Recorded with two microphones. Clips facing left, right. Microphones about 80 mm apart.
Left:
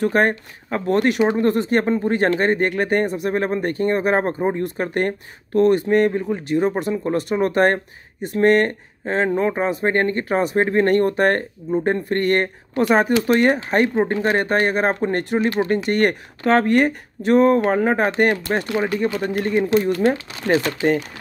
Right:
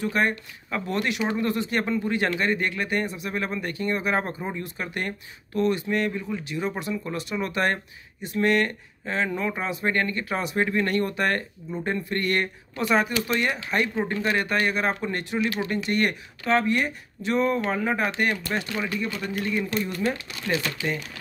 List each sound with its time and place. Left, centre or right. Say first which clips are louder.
0.0 s speech: left 7 dB; left